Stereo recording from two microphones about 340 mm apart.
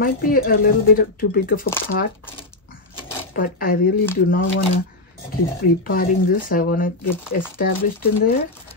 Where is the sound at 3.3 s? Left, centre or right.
Left.